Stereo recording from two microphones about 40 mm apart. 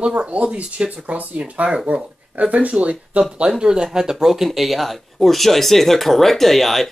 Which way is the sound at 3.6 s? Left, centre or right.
Centre.